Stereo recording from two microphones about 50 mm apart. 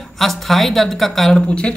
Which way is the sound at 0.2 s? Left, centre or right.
Centre.